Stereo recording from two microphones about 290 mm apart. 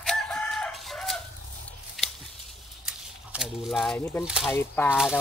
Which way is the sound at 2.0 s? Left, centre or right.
Centre.